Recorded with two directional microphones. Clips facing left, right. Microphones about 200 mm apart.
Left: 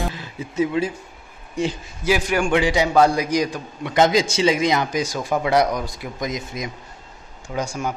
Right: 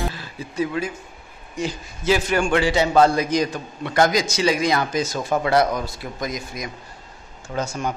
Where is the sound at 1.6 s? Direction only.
30° left (ahead or behind).